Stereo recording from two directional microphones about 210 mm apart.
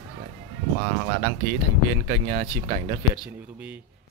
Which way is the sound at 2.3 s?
35° right (ahead or behind).